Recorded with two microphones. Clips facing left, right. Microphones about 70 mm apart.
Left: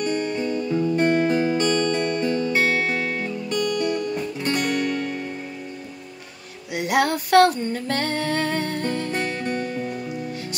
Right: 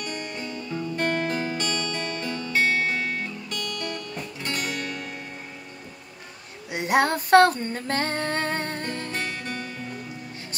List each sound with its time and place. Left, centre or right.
0.0 s music: left
1.6 s music: left
2.2 s music: centre
3.0 s music: centre
3.4 s music: left
4.5 s music: centre
6.7 s a sound: right
9.1 s music: left